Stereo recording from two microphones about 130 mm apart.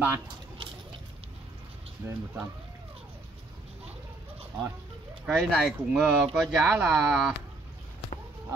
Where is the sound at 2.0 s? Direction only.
15° right (ahead or behind).